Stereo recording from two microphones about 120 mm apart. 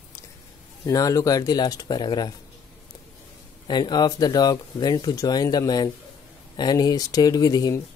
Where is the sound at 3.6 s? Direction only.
35° left (ahead or behind).